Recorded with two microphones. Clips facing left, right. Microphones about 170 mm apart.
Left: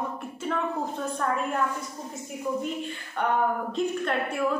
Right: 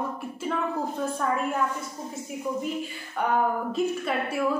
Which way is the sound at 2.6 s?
5° right (ahead or behind).